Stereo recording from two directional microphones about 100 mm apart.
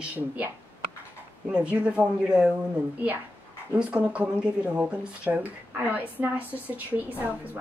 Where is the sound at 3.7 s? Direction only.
10° right (ahead or behind).